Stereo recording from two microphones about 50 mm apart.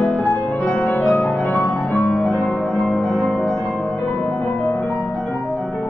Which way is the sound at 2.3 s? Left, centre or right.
Left.